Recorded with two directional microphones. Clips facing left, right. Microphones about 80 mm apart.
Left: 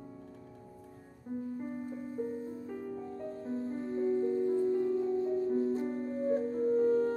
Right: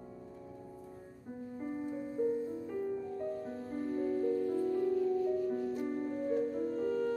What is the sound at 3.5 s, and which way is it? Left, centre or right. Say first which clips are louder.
Music: left 2 dB; left.